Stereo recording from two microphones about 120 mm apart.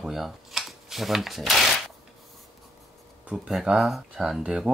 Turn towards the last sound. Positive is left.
turn(degrees=-5)  # may be behind; listen again after turning